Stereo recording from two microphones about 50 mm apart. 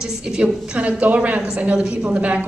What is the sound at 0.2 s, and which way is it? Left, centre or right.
A woman's voice, centre.